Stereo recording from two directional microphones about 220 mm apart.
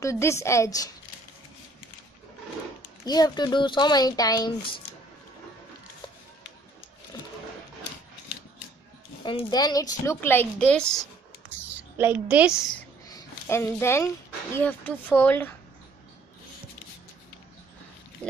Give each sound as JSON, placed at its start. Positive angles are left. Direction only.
{"t": 0.0, "sound": "a woman's voice", "side_deg": 15}
{"t": 3.1, "sound": "speech", "side_deg": 20}
{"t": 7.1, "sound": "vehicle", "side_deg": 20}
{"t": 9.2, "sound": "a woman's voice", "side_deg": 20}
{"t": 11.7, "sound": "a woman's voice", "side_deg": -5}
{"t": 13.1, "sound": "a sound", "side_deg": 10}
{"t": 14.5, "sound": "a woman's voice", "side_deg": 10}